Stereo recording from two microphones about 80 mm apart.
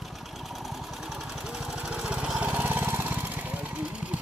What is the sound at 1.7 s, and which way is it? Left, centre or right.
Lawn mower, centre.